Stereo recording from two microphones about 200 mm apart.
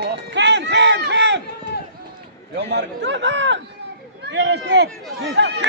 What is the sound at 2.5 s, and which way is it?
Speech, 60° right (ahead or behind).